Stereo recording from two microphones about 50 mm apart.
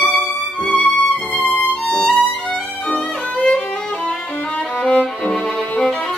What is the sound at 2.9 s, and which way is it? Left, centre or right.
Violin, centre.